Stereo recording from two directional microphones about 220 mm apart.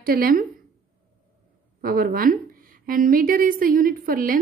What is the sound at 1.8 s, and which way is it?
A woman's voice, 40° right (ahead or behind).